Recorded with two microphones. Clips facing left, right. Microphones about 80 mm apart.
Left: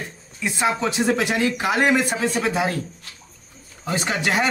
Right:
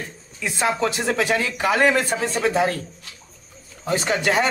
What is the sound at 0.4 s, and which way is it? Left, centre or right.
Speech, centre.